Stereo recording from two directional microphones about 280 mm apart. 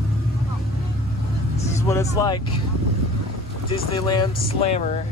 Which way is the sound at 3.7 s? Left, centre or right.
Centre.